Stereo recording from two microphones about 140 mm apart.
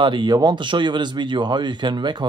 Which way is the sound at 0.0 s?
35° right (ahead or behind).